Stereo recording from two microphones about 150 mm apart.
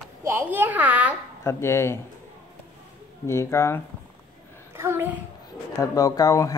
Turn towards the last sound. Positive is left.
turn(degrees=20)  # may be behind; listen again after turning